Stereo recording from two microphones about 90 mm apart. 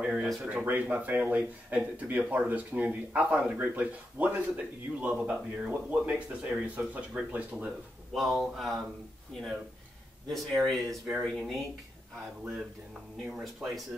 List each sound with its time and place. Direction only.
0.0 s speech: 10° right (ahead or behind)
8.1 s speech: centre (ahead or behind)
10.2 s speech: centre (ahead or behind)
13.3 s speech: centre (ahead or behind)